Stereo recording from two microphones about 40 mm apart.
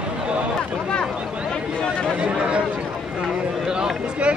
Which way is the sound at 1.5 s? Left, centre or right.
Left.